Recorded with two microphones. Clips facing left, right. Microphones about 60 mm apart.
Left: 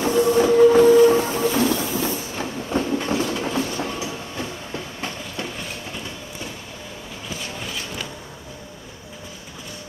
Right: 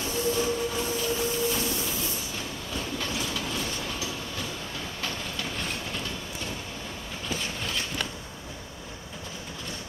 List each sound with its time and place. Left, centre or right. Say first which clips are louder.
0.0 s train: left 10 dB; left